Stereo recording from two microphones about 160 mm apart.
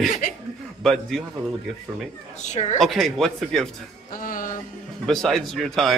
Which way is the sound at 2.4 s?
45° left (ahead or behind).